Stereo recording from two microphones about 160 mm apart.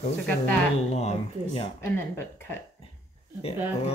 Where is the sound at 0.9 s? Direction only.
40° left (ahead or behind).